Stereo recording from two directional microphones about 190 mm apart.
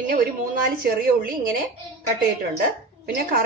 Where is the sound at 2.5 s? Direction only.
55° right (ahead or behind).